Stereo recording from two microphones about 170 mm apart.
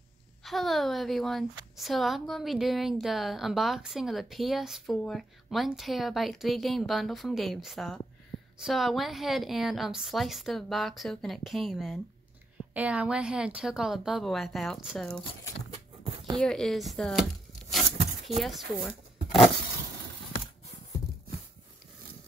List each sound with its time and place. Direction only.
0.4 s a woman's voice: centre (ahead or behind)
15.7 s a sound: 30° right (ahead or behind)
16.3 s a woman's voice: 5° left (ahead or behind)
18.4 s speech: centre (ahead or behind)